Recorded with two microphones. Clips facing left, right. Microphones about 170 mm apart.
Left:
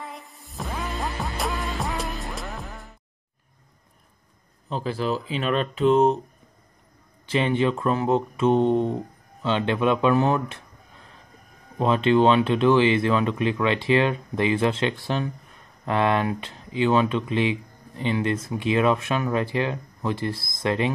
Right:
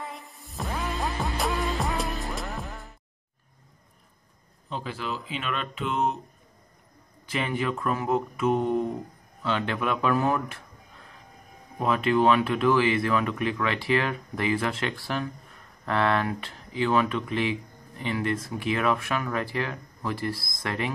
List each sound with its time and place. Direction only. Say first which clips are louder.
0.0 s music: even; centre (ahead or behind)
4.6 s speech: left 7 dB; 35° left (ahead or behind)
7.2 s speech: left 6 dB; 25° left (ahead or behind)
11.8 s speech: left 4 dB; 25° left (ahead or behind)